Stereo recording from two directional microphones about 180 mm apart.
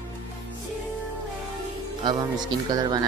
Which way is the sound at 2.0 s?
25° right (ahead or behind).